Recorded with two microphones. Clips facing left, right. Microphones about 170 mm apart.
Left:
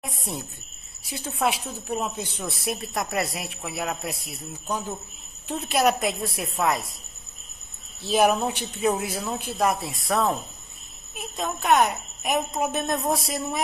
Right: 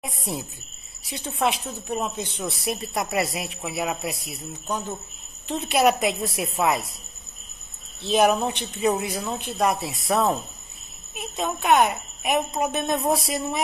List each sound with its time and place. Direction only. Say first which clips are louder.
0.0 s speech: right 2 dB; centre (ahead or behind)
8.1 s speech: right 1 dB; centre (ahead or behind)